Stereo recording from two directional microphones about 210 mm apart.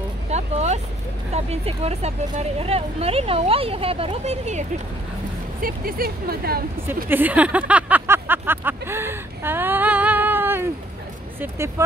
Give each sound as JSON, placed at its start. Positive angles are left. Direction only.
{"t": 0.3, "sound": "vehicle", "side_deg": -30}
{"t": 1.3, "sound": "speech", "side_deg": -30}
{"t": 5.6, "sound": "speech", "side_deg": -45}
{"t": 7.1, "sound": "a sound", "side_deg": -10}
{"t": 11.3, "sound": "speech", "side_deg": -10}